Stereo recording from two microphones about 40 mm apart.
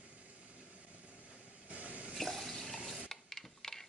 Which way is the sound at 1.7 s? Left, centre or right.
Right.